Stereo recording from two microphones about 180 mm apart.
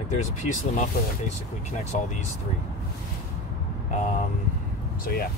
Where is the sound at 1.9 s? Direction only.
40° left (ahead or behind).